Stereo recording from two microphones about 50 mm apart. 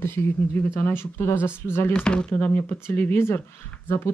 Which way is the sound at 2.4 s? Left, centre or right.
Left.